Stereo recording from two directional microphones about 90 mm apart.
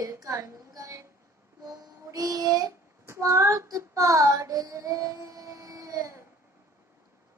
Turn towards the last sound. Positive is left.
turn(degrees=-40)  # may be behind; listen again after turning